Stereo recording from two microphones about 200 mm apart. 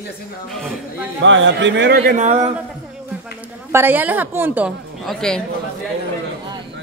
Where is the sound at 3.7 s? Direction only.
10° right (ahead or behind).